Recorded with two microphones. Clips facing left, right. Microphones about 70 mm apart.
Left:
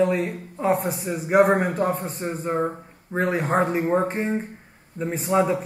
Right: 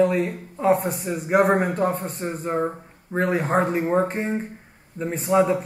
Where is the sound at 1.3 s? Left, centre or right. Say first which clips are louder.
Left 1 dB; centre.